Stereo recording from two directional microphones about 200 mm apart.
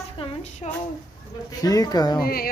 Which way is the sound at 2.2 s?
50° left (ahead or behind).